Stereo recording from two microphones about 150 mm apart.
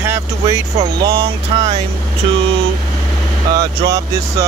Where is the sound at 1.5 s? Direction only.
40° right (ahead or behind).